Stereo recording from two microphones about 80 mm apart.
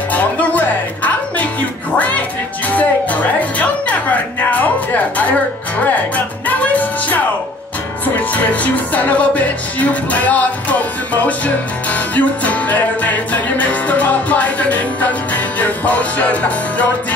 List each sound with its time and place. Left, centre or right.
0.1 s music: centre